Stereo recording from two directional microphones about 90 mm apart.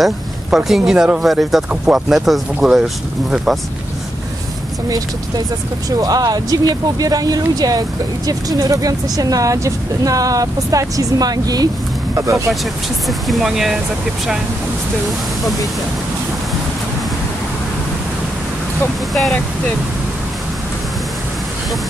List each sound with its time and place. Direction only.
0.0 s speech: 5° right (ahead or behind)
5.9 s speech: 45° right (ahead or behind)
13.3 s speech: 5° right (ahead or behind)